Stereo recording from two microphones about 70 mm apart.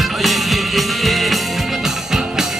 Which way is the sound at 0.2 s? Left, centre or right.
Centre.